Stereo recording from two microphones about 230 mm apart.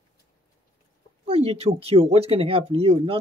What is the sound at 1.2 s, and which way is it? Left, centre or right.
Speech, right.